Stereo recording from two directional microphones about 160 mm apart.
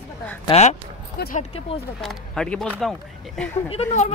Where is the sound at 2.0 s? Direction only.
5° left (ahead or behind).